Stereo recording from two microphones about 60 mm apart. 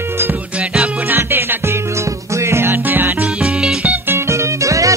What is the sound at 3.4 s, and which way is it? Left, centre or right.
Music, centre.